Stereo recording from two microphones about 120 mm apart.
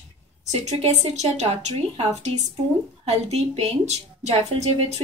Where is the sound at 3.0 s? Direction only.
60° right (ahead or behind).